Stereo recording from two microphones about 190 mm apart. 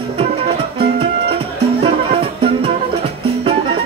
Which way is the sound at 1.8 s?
30° right (ahead or behind).